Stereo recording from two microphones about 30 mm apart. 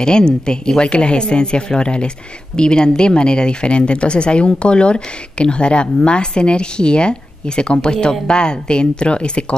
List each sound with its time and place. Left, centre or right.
0.0 s speech: left